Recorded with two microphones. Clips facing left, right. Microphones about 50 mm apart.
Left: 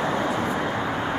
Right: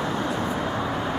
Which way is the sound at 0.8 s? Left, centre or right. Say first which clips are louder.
Left 1 dB; centre.